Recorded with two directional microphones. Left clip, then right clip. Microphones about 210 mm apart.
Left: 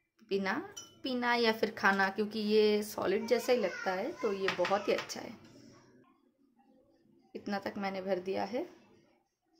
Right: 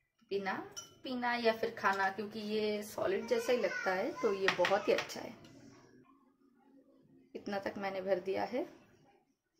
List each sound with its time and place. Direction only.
0.3 s a woman's voice: 50° left (ahead or behind); by 3.6 s 30° left (ahead or behind)
3.8 s a child's voice: 5° left (ahead or behind)
7.3 s a woman's voice: 15° left (ahead or behind)